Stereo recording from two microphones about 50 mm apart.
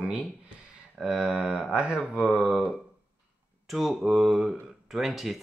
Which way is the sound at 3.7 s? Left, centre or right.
Centre.